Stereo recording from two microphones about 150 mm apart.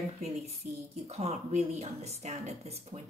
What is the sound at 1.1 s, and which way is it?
Speech, 45° right (ahead or behind).